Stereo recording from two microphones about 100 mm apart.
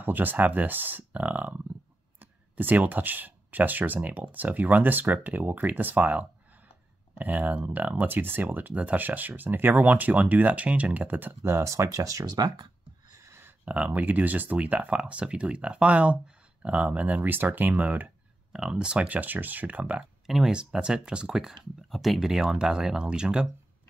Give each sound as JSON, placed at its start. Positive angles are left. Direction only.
{"t": 0.0, "sound": "speech", "side_deg": -20}
{"t": 13.2, "sound": "speech", "side_deg": -25}
{"t": 20.2, "sound": "speech", "side_deg": -5}